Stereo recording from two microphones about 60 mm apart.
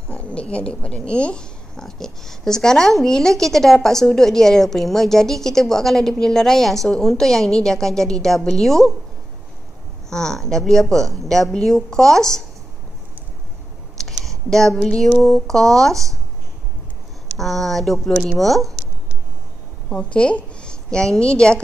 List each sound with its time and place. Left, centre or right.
0.1 s a woman's voice: centre
10.0 s speech: centre
13.9 s clicking: centre
15.4 s speech: centre
17.4 s speech: centre
19.9 s a woman's voice: centre